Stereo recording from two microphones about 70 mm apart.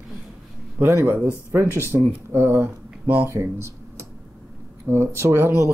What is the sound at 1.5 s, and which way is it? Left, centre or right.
Speech, right.